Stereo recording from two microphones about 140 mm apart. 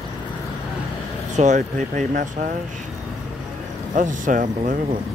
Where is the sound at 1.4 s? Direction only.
60° right (ahead or behind).